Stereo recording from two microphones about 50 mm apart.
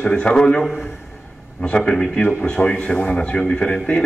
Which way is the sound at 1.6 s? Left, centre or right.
Left.